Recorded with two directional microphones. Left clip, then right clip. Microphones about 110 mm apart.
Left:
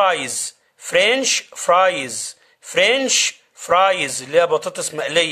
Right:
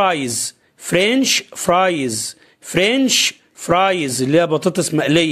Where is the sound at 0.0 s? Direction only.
35° right (ahead or behind).